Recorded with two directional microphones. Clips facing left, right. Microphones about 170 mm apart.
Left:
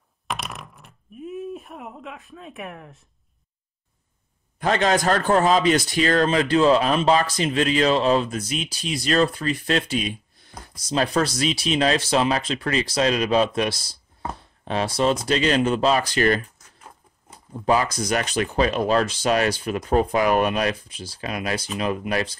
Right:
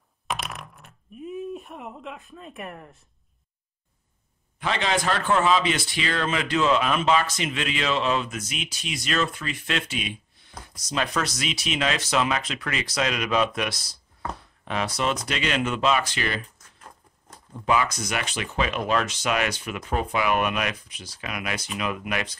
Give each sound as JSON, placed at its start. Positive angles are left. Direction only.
{"t": 0.3, "sound": "speech", "side_deg": 0}
{"t": 4.6, "sound": "a man's voice", "side_deg": 45}
{"t": 17.6, "sound": "a man's voice", "side_deg": 35}